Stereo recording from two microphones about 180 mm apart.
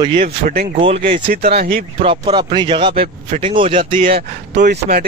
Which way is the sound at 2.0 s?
25° right (ahead or behind).